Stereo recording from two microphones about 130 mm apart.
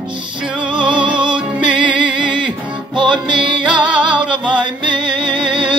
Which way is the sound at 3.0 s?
40° right (ahead or behind).